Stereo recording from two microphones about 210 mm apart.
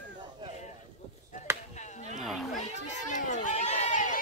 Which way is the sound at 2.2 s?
Centre (ahead or behind).